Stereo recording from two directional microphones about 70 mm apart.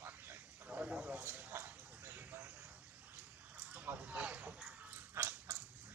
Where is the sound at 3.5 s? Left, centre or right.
Right.